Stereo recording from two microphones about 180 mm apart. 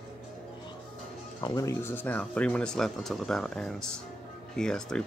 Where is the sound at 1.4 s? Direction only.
20° left (ahead or behind); by 5.0 s 5° left (ahead or behind).